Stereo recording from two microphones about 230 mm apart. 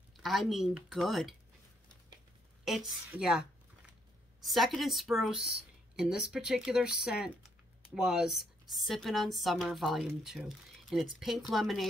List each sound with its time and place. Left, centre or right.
0.2 s speech: centre
2.6 s speech: centre